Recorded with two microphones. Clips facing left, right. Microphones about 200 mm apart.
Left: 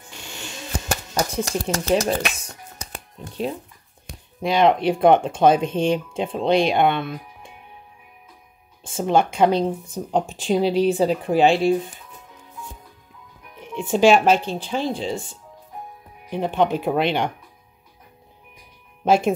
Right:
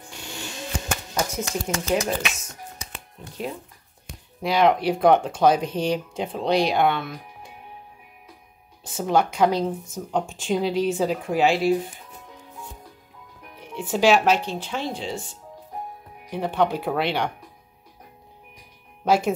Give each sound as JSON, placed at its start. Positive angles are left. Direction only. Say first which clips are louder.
{"t": 0.8, "sound": "shuffling cards", "louder": "left 3 dB", "side_deg": 35}
{"t": 4.4, "sound": "speech", "louder": "left 2 dB", "side_deg": 25}
{"t": 8.9, "sound": "speech", "louder": "left 2 dB", "side_deg": 25}
{"t": 13.8, "sound": "speech", "louder": "left 4 dB", "side_deg": 25}
{"t": 14.1, "sound": "speech", "louder": "left 3 dB", "side_deg": 50}
{"t": 14.5, "sound": "speech", "louder": "left 4 dB", "side_deg": 30}
{"t": 16.3, "sound": "speech", "louder": "left 2 dB", "side_deg": 20}
{"t": 19.0, "sound": "speech", "louder": "left 3 dB", "side_deg": 25}